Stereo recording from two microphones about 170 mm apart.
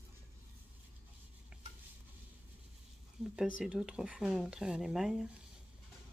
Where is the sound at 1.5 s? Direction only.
5° right (ahead or behind).